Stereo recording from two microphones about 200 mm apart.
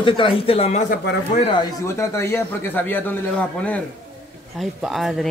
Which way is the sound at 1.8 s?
15° left (ahead or behind).